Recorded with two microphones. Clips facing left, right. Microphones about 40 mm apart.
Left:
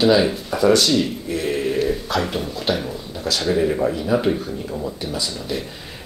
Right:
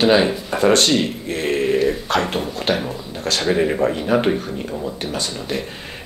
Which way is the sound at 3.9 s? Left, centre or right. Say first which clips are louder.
Right 2 dB; right.